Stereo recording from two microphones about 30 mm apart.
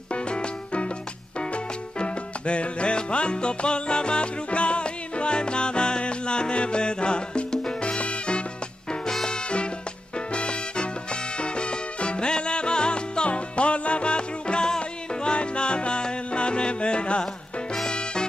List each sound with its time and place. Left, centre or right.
0.1 s music: left
10.1 s music: left